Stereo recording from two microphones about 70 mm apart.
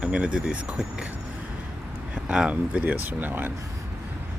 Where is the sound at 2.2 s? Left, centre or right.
Centre.